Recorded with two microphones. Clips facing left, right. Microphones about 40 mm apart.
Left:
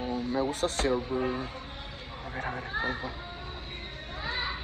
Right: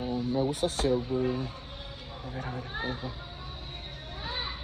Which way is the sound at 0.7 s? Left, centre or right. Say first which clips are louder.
Right 1 dB; left.